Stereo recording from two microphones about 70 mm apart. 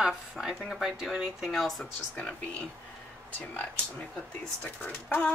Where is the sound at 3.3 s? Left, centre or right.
Left.